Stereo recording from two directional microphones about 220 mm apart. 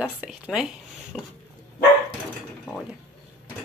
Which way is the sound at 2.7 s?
5° right (ahead or behind).